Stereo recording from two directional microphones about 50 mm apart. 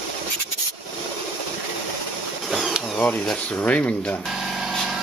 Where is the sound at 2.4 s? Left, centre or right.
Centre.